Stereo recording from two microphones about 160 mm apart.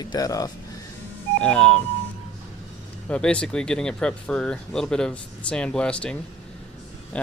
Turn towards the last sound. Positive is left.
turn(degrees=5)  # may be behind; listen again after turning